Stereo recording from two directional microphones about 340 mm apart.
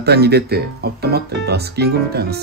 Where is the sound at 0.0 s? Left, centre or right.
Right.